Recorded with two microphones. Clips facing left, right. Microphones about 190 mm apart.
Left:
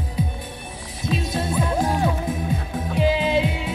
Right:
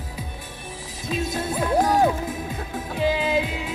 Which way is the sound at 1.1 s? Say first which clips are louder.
Left 1 dB; 25° left (ahead or behind).